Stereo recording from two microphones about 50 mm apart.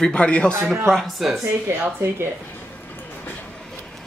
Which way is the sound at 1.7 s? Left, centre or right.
Right.